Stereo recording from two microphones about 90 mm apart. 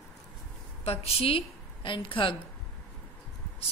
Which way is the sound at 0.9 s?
90° left.